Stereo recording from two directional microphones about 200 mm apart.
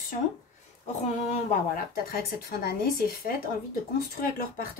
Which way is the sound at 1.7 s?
50° left (ahead or behind).